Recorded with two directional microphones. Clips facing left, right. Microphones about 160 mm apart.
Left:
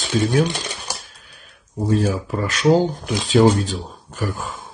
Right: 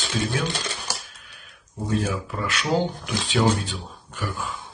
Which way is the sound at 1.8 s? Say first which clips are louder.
Left 6 dB; 35° left (ahead or behind).